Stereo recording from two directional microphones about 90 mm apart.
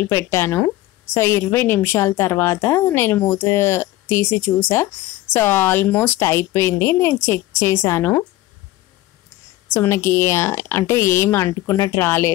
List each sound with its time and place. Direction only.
0.0 s a woman's voice: 30° left (ahead or behind)
9.8 s speech: 30° left (ahead or behind)